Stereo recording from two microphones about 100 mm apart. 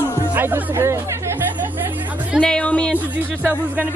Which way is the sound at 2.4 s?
10° left (ahead or behind).